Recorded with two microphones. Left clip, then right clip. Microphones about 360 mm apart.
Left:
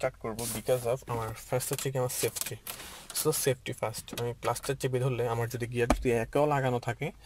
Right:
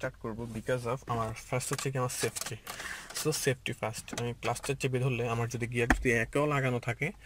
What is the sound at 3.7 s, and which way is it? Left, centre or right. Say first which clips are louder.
Speech: left 1 dB; left.